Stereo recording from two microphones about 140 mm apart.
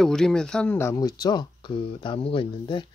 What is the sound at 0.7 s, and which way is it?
Speech, 25° left (ahead or behind).